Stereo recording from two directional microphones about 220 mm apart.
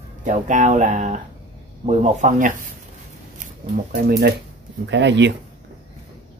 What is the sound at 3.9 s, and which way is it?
Speech, 45° right (ahead or behind).